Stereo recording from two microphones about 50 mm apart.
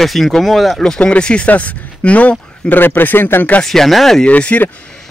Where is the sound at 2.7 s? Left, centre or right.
Left.